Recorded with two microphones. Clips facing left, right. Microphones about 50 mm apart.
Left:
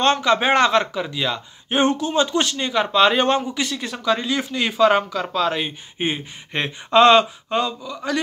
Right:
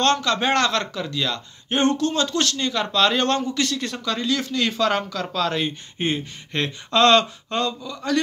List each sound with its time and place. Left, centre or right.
0.0 s a man's voice: centre